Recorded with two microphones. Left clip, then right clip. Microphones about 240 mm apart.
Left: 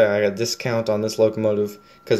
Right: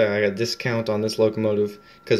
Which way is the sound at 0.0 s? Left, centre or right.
Centre.